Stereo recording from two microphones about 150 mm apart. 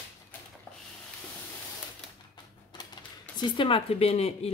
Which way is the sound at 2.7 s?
30° left (ahead or behind).